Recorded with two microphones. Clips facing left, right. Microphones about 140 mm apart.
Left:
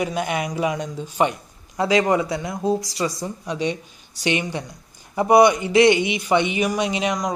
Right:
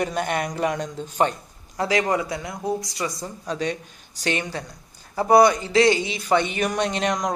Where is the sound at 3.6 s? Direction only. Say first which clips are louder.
Left 4 dB; 45° right (ahead or behind).